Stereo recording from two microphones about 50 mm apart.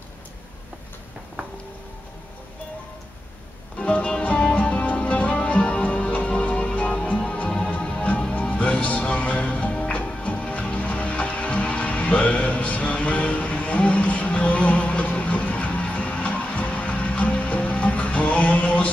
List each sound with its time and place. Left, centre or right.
3.7 s music: left